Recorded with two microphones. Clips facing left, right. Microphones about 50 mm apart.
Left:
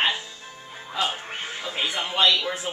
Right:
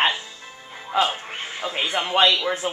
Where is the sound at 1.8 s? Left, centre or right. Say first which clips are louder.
Right 4 dB; right.